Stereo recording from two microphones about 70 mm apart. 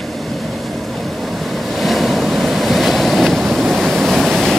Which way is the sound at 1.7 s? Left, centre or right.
Centre.